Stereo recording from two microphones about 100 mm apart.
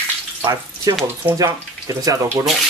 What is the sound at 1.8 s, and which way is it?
Speech, 35° right (ahead or behind).